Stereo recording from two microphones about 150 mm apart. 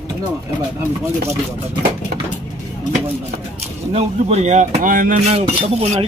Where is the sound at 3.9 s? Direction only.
45° right (ahead or behind); by 5.4 s 65° right (ahead or behind).